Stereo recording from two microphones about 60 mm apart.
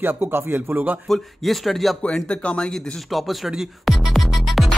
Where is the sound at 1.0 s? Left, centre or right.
Centre.